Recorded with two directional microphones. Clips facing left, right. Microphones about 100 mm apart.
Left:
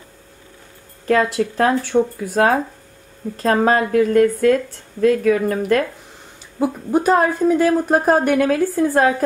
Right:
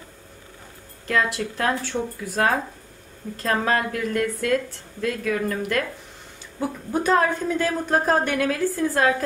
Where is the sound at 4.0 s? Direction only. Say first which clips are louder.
Left 10 dB; 45° left (ahead or behind).